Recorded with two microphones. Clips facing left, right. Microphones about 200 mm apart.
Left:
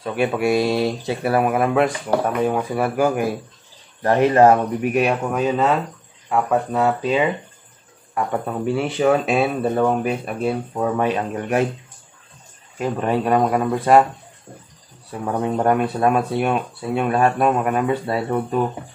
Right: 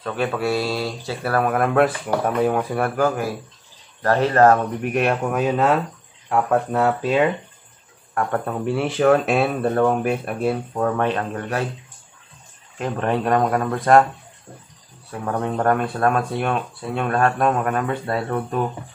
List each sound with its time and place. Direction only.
0.0 s speech: 10° left (ahead or behind)
3.0 s speech: 15° left (ahead or behind)
12.7 s speech: 5° left (ahead or behind)
15.2 s speech: 10° left (ahead or behind)